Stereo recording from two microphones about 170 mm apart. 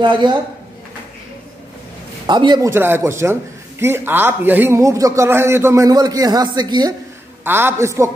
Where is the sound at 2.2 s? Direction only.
25° right (ahead or behind).